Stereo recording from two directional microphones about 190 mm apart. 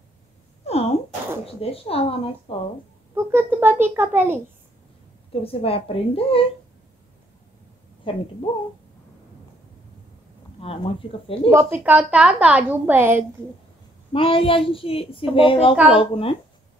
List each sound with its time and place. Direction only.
0.7 s a sound: 35° left (ahead or behind)
1.4 s speech: 30° left (ahead or behind)
3.2 s a woman's voice: 10° right (ahead or behind)
5.3 s a woman's voice: 30° left (ahead or behind)
8.0 s a woman's voice: 25° left (ahead or behind)
10.6 s a woman's voice: 30° left (ahead or behind)
11.5 s a woman's voice: 10° right (ahead or behind)
14.1 s a woman's voice: 30° left (ahead or behind)